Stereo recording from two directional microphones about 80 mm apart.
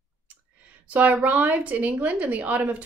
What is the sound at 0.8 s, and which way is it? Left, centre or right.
A woman's voice, centre.